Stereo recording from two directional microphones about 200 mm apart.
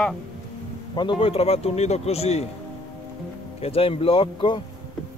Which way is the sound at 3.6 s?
30° left (ahead or behind).